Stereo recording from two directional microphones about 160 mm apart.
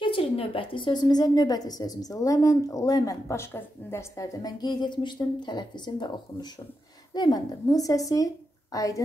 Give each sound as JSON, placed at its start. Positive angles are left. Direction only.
{"t": 0.0, "sound": "a woman's voice", "side_deg": 35}
{"t": 7.2, "sound": "a woman's voice", "side_deg": 25}